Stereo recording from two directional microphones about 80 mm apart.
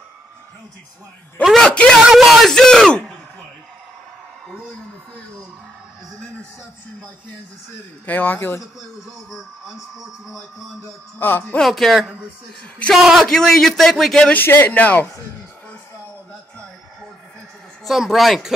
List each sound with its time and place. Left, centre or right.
1.6 s speech: centre
2.0 s a man's voice: centre
8.1 s speech: left
9.3 s a man's voice: centre
11.1 s speech: left
11.4 s speech: centre
11.7 s a man's voice: centre
14.3 s speech: left
17.8 s a man's voice: centre